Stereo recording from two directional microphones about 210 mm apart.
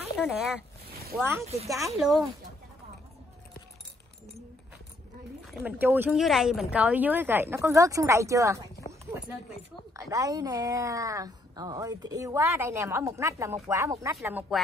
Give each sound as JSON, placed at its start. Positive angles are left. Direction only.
{"t": 0.2, "sound": "speech", "side_deg": -5}
{"t": 1.4, "sound": "speech", "side_deg": -30}
{"t": 1.9, "sound": "speech", "side_deg": 0}
{"t": 5.5, "sound": "a woman's voice", "side_deg": -5}
{"t": 9.9, "sound": "a woman's voice", "side_deg": -15}
{"t": 14.5, "sound": "speech", "side_deg": 0}